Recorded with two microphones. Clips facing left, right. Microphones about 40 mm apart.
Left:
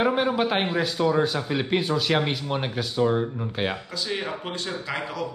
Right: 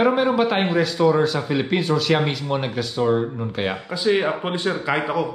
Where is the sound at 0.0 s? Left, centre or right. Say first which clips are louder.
Right 4 dB; centre.